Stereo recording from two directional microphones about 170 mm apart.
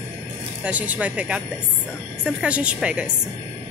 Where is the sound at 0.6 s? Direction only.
10° right (ahead or behind).